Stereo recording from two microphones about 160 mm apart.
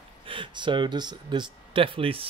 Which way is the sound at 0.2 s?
30° right (ahead or behind).